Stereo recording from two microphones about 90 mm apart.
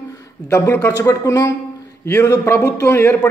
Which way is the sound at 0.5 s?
30° left (ahead or behind).